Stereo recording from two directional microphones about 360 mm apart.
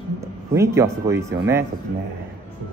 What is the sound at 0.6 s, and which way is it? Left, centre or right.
Speech, centre.